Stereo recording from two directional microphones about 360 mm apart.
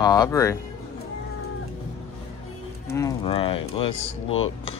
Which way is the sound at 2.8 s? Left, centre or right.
Centre.